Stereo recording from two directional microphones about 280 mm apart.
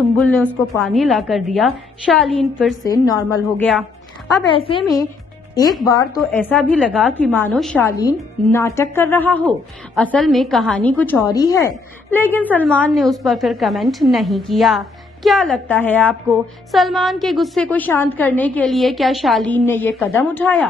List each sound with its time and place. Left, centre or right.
0.2 s a woman's voice: centre
2.8 s a woman's voice: centre
5.9 s a woman's voice: centre